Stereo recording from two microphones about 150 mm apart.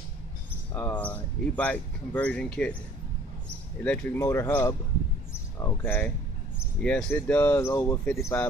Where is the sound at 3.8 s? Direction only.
10° left (ahead or behind).